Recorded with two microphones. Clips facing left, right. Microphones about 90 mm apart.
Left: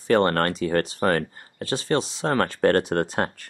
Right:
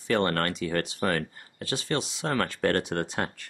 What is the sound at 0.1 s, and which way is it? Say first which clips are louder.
Speech: left 6 dB; 40° left (ahead or behind).